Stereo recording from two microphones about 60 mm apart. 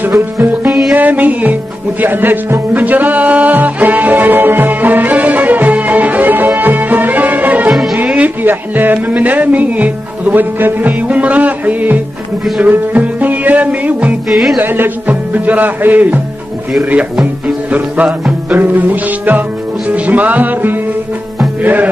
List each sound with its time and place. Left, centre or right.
0.9 s music: right
7.7 s music: centre
8.0 s speech: right
12.5 s music: right
14.3 s music: centre
14.6 s music: right